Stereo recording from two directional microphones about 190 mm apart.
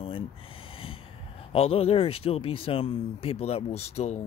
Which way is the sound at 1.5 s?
30° left (ahead or behind).